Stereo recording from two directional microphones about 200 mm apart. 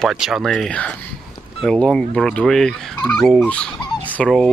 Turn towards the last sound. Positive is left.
turn(degrees=5)  # may be behind; listen again after turning